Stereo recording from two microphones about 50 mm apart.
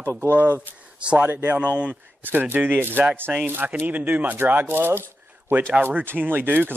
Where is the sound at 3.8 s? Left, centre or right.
Right.